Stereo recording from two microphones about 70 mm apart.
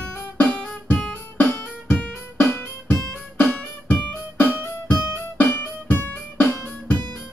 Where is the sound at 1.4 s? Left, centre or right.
Left.